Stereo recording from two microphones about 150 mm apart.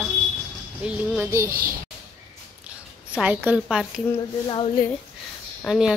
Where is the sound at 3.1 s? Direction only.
10° right (ahead or behind).